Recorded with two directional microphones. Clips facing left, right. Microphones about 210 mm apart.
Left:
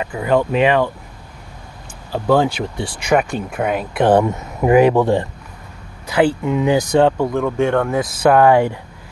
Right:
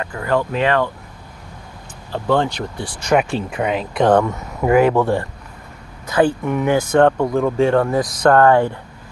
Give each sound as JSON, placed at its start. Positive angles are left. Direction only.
{"t": 0.0, "sound": "speech", "side_deg": 15}
{"t": 2.1, "sound": "speech", "side_deg": 10}
{"t": 4.2, "sound": "speech", "side_deg": 20}
{"t": 7.1, "sound": "speech", "side_deg": 0}